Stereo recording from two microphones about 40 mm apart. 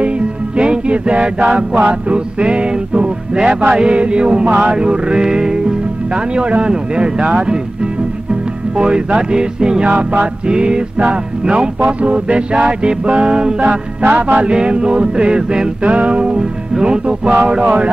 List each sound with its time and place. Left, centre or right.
0.6 s music: right
4.5 s speech: right
4.7 s music: right
13.6 s music: right